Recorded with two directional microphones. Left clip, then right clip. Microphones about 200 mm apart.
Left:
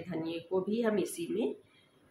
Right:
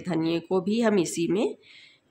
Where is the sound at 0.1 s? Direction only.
50° right (ahead or behind).